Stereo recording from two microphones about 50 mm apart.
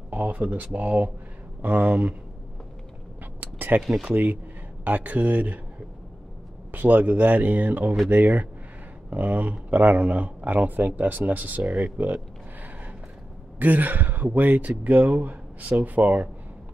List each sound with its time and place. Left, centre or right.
0.1 s speech: right
3.3 s a sound: right
3.8 s speech: centre
4.1 s speech: right
6.7 s speech: right
13.6 s speech: right